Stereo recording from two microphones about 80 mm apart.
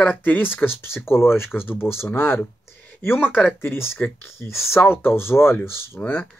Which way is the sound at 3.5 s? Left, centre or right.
Left.